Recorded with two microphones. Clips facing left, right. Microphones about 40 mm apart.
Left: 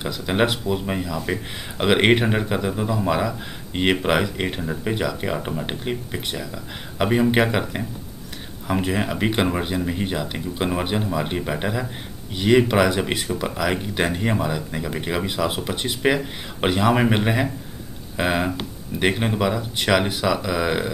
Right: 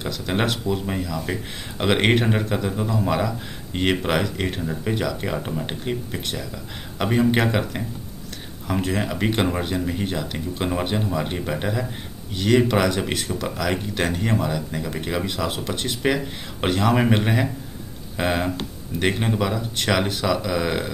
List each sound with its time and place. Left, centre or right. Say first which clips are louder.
0.0 s speech: left 3 dB; centre